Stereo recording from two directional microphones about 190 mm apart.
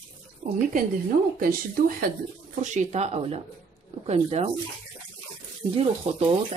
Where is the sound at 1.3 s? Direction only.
45° right (ahead or behind).